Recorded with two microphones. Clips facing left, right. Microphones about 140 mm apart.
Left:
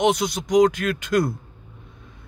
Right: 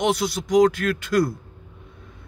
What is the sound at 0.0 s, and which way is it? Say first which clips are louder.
Speech: left 2 dB; 20° left (ahead or behind).